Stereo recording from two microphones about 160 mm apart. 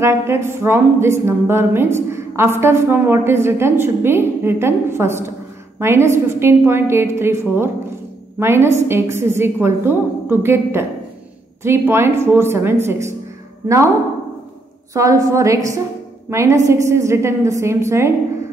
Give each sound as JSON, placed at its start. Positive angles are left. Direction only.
{"t": 0.0, "sound": "a woman's voice", "side_deg": -15}
{"t": 15.0, "sound": "a woman's voice", "side_deg": -20}